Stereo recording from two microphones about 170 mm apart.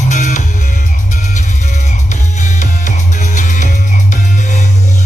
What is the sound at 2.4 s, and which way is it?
Music, 45° left (ahead or behind).